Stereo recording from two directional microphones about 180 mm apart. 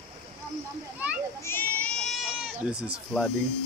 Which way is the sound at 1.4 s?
10° left (ahead or behind).